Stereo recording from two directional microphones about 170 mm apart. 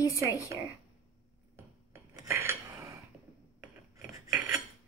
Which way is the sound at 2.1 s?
15° right (ahead or behind).